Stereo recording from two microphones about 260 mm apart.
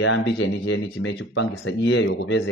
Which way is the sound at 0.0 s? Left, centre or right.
Left.